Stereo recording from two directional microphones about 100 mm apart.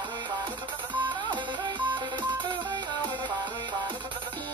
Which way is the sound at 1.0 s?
50° right (ahead or behind).